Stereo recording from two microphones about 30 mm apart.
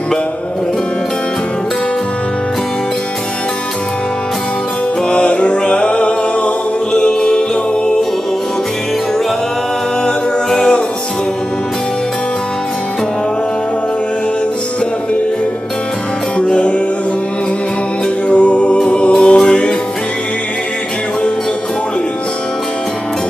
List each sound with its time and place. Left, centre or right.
5.1 s music: left
6.9 s music: left
16.3 s music: left
18.3 s a capella: left
18.8 s choir: left